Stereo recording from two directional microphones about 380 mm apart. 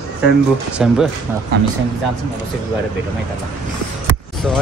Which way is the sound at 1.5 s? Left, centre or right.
Right.